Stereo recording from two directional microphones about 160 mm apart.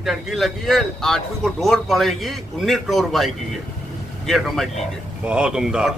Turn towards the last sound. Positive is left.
turn(degrees=-5)  # may be behind; listen again after turning